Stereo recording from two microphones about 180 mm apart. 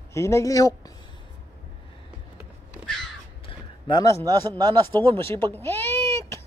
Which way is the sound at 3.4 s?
25° left (ahead or behind).